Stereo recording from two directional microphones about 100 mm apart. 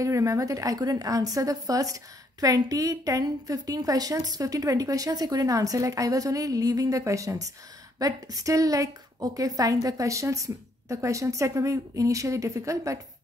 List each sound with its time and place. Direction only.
0.0 s a woman's voice: 30° right (ahead or behind)